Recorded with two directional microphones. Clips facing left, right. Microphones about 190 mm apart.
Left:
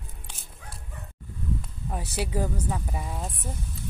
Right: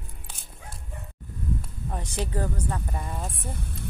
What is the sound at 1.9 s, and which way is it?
Speech, 5° left (ahead or behind).